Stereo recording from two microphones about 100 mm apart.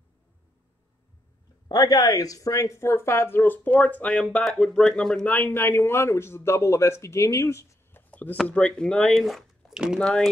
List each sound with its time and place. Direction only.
1.7 s speech: 40° left (ahead or behind); by 5.2 s 5° left (ahead or behind)
5.2 s speech: 20° left (ahead or behind)
8.1 s a sound: 15° left (ahead or behind)
8.5 s speech: 10° left (ahead or behind)
9.1 s speech: centre (ahead or behind)
9.9 s speech: 10° left (ahead or behind)